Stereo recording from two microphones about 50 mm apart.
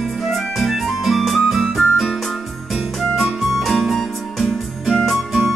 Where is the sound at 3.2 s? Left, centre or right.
Centre.